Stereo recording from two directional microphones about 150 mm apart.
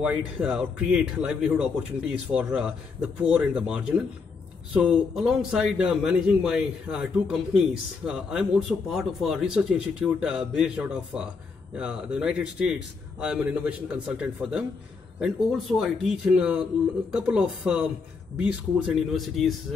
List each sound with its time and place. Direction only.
0.0 s a man's voice: 10° right (ahead or behind)